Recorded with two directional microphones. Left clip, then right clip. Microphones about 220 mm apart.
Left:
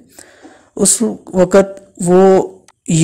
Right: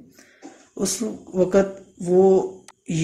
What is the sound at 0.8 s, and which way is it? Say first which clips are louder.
A woman's voice: left 11 dB; 40° left (ahead or behind).